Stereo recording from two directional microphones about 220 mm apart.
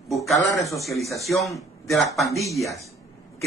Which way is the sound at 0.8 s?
Centre (ahead or behind).